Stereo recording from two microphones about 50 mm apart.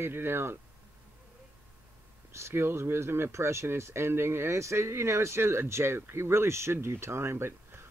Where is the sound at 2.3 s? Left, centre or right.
Right.